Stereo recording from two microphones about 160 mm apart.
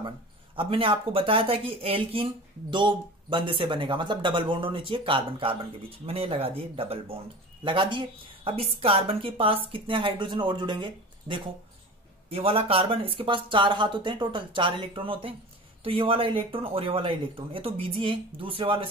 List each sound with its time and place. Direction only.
0.6 s speech: 35° right (ahead or behind)